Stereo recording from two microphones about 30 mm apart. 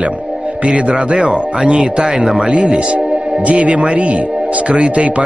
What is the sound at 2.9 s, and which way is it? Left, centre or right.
Speech, right.